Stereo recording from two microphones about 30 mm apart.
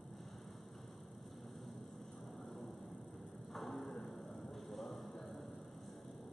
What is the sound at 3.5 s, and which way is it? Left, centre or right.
Mechanisms, centre.